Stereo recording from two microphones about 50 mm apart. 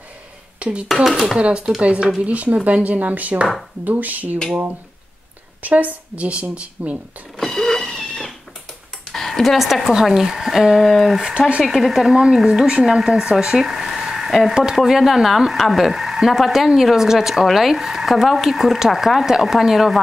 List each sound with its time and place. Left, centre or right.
0.6 s speech: right
0.8 s speech: centre
1.8 s a woman's voice: right
5.6 s a woman's voice: right
7.3 s cat: centre
9.1 s speech: centre
10.9 s speech: centre
11.1 s speech: centre
11.6 s a woman's voice: centre; by 12.8 s right
12.8 s speech: centre